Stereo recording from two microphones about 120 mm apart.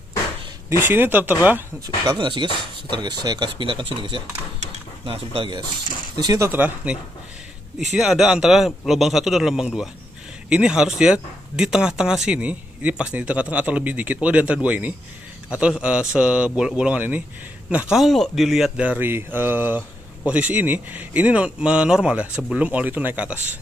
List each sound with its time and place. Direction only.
0.7 s speech: 20° right (ahead or behind)
2.0 s speech: 40° right (ahead or behind)
6.1 s speech: 35° right (ahead or behind)
6.4 s a man's voice: 15° right (ahead or behind)